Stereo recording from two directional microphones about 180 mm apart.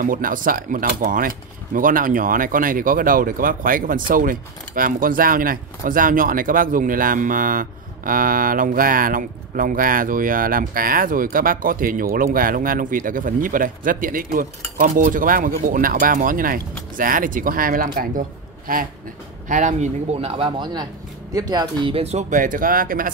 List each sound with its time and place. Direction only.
0.0 s speech: 50° right (ahead or behind)
19.4 s speech: 45° right (ahead or behind)